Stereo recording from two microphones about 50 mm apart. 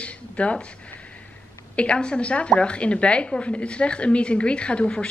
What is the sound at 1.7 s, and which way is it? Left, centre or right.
A woman's voice, left.